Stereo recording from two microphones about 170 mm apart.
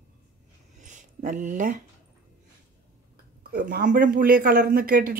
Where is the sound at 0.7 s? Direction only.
50° right (ahead or behind).